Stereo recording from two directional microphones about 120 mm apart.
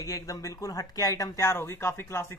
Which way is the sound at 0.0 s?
30° left (ahead or behind).